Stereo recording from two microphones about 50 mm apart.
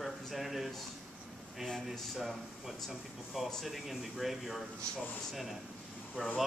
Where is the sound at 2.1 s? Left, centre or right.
Centre.